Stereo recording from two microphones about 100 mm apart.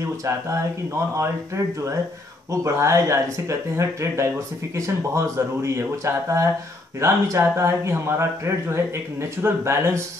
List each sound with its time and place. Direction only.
0.0 s speech: 30° right (ahead or behind)